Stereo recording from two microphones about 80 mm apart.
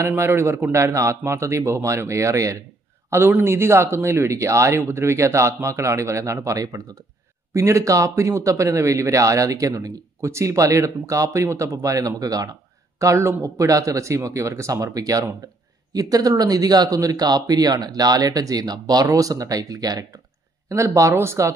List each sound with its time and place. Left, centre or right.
0.0 s speech: right
3.1 s speech: right
13.0 s speech: right
20.6 s speech: right